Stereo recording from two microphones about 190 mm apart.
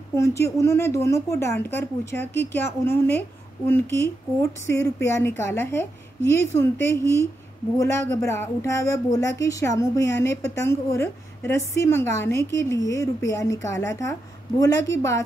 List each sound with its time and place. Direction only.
0.1 s a woman's voice: 15° left (ahead or behind)
8.1 s a woman's voice: 15° left (ahead or behind)